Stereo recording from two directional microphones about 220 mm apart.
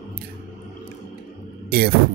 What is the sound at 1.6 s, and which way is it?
Speech, 45° right (ahead or behind).